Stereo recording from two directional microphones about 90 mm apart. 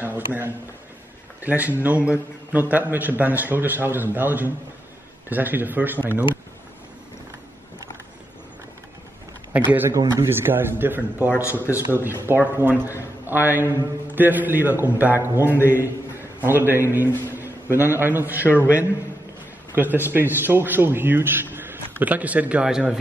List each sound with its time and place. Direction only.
0.0 s a sound: 25° right (ahead or behind)
1.4 s a man's voice: 20° right (ahead or behind)
9.5 s a man's voice: 15° right (ahead or behind)
9.8 s a man's voice: 35° right (ahead or behind)
11.4 s a man's voice: 30° left (ahead or behind)
12.3 s a man's voice: 25° right (ahead or behind)
19.7 s a man's voice: 20° right (ahead or behind)